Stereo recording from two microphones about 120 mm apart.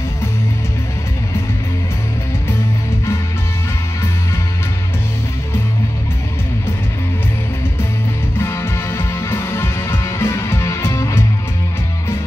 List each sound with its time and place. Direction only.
8.4 s music: 20° left (ahead or behind)